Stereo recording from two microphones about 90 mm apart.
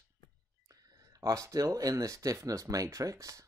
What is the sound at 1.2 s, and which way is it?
Speech, 35° right (ahead or behind).